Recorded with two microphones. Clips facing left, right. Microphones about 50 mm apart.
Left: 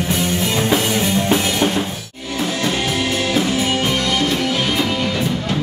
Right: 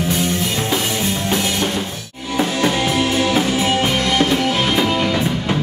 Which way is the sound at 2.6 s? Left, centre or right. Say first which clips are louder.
Right 1 dB; centre.